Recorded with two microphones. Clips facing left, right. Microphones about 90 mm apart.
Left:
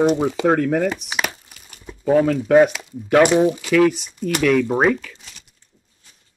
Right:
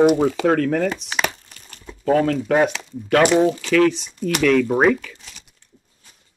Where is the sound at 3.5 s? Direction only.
10° left (ahead or behind).